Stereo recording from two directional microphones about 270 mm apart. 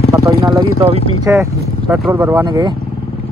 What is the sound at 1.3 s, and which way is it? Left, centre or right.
Speech, centre.